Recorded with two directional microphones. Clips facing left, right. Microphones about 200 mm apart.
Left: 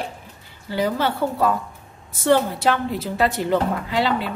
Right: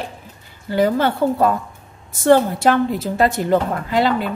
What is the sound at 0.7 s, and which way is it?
A woman's voice, 50° right (ahead or behind).